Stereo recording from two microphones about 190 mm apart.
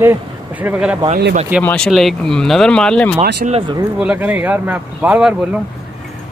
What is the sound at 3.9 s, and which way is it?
Speech, 5° right (ahead or behind).